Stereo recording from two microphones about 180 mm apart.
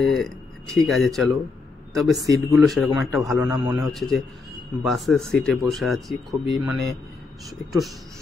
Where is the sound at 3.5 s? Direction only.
25° right (ahead or behind).